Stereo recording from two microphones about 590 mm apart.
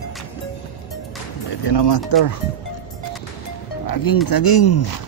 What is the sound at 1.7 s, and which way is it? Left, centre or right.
Speech, left.